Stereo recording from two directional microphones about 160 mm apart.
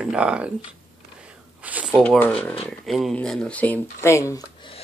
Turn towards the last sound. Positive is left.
turn(degrees=20)  # may be behind; listen again after turning